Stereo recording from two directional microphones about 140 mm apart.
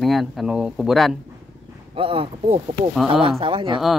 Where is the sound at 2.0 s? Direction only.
40° right (ahead or behind).